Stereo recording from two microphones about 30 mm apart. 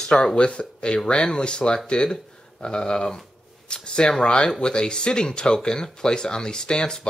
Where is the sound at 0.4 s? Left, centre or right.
Left.